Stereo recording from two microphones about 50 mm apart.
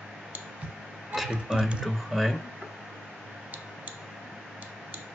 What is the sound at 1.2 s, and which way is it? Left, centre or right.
Speech, centre.